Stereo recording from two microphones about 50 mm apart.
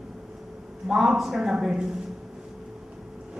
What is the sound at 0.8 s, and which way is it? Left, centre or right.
A woman's voice, centre.